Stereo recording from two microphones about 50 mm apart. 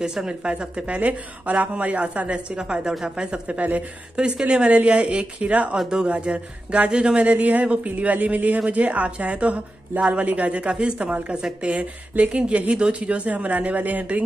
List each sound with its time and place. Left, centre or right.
0.0 s speech: centre
2.9 s speech: centre
3.3 s speech: right
5.8 s speech: centre
7.2 s speech: right